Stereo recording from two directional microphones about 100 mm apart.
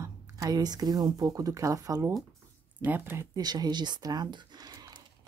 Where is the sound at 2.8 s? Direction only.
20° right (ahead or behind).